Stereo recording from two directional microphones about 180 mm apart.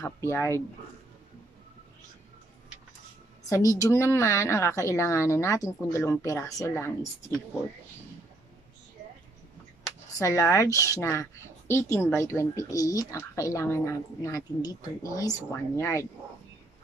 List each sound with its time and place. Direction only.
0.0 s a woman's voice: 15° left (ahead or behind)
3.4 s a woman's voice: 20° left (ahead or behind)
10.1 s a woman's voice: 15° left (ahead or behind)